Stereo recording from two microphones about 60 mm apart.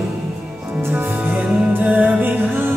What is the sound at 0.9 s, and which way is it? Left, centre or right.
Music, right.